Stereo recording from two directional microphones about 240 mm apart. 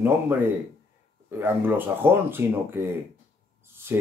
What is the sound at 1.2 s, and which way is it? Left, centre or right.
Speech, centre.